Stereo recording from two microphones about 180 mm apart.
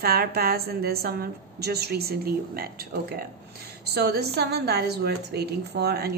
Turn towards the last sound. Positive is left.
turn(degrees=-65)  # may be behind; listen again after turning